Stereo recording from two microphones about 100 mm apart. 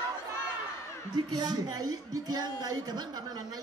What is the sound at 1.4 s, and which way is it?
A man's voice, 40° right (ahead or behind).